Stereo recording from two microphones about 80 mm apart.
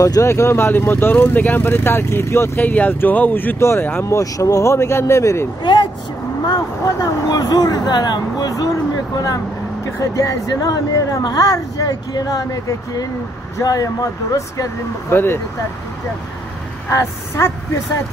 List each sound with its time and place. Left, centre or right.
0.0 s speech: left
0.3 s speech: left
2.6 s speech: left
3.5 s speech: left
5.6 s speech: left
6.4 s speech: left
15.0 s speech: left
16.9 s speech: left